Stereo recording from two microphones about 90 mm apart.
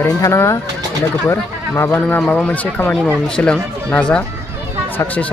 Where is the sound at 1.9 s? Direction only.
15° left (ahead or behind).